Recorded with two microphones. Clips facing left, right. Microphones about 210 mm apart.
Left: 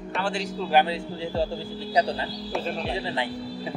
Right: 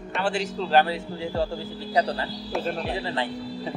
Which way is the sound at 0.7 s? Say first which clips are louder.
Right 1 dB; 15° left (ahead or behind).